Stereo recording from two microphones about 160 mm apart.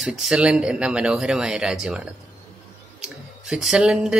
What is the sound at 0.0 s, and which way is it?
Speech, 5° right (ahead or behind).